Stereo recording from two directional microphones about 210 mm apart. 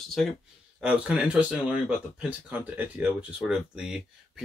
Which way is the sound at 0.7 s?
5° right (ahead or behind).